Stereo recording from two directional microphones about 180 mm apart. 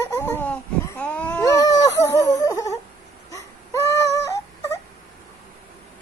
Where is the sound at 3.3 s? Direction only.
15° left (ahead or behind).